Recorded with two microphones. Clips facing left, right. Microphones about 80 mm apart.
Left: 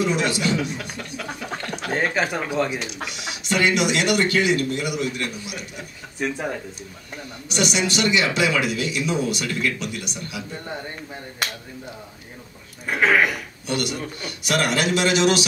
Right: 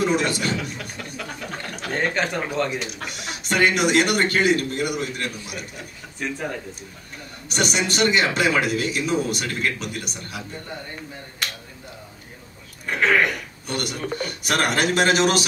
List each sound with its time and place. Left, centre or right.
0.3 s a man's voice: right
1.8 s speech: centre
3.1 s speech: right
6.1 s speech: centre
7.4 s speech: right
12.8 s speech: centre
13.7 s speech: right